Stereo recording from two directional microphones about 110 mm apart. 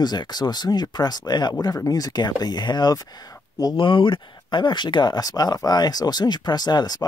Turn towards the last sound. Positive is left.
turn(degrees=40)  # may be behind; listen again after turning